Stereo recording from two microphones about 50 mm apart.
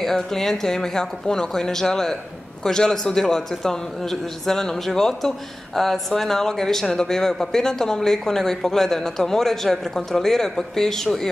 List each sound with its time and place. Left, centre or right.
0.0 s speech: centre